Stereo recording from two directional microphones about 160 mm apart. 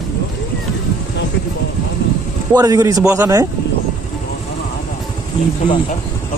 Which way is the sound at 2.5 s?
20° right (ahead or behind).